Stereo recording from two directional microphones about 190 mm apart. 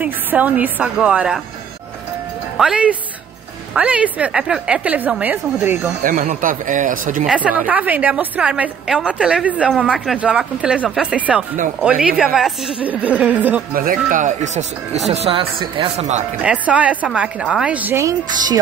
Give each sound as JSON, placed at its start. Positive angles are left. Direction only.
{"t": 0.0, "sound": "a woman's voice", "side_deg": -10}
{"t": 2.5, "sound": "a woman's voice", "side_deg": -5}
{"t": 6.0, "sound": "speech", "side_deg": -45}
{"t": 7.2, "sound": "a woman's voice", "side_deg": -5}
{"t": 13.7, "sound": "speech", "side_deg": -45}
{"t": 16.3, "sound": "a woman's voice", "side_deg": -5}